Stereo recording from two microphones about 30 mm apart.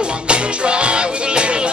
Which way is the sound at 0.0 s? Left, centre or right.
Right.